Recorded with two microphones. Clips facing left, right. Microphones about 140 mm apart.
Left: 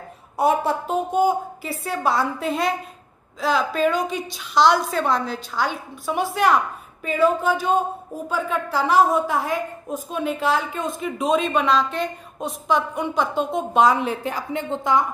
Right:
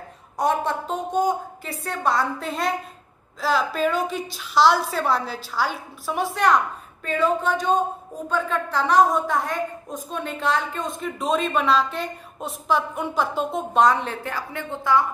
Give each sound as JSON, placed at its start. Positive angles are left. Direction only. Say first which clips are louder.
{"t": 0.4, "sound": "a woman's voice", "louder": "left 3 dB", "side_deg": 10}
{"t": 14.1, "sound": "a woman's voice", "louder": "left 4 dB", "side_deg": 15}